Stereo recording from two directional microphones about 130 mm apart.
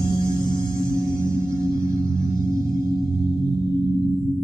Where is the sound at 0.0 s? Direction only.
35° left (ahead or behind).